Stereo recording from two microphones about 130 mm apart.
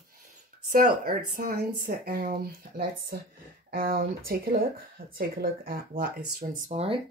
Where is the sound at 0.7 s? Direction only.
90° right.